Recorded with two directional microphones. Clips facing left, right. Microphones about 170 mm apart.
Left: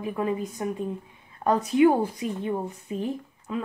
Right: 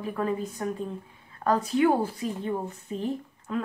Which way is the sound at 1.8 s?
15° left (ahead or behind).